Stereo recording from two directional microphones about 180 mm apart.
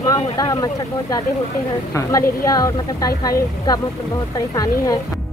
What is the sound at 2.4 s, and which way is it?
Speech, 20° left (ahead or behind).